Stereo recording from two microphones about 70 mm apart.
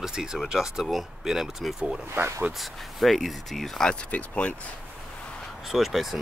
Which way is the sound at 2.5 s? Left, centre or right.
Centre.